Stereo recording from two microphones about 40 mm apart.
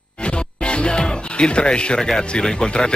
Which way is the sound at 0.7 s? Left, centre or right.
Left.